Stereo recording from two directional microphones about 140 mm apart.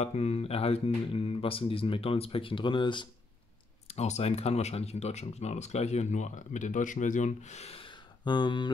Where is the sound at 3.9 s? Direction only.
50° left (ahead or behind).